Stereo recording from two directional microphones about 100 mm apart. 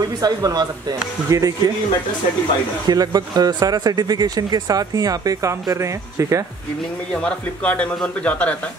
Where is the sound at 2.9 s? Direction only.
40° right (ahead or behind).